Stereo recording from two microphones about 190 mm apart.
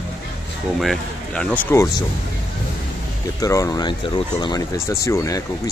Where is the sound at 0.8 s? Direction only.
5° left (ahead or behind).